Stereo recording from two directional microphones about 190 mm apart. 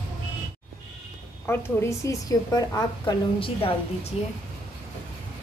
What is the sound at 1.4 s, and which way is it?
A woman's voice, 15° left (ahead or behind).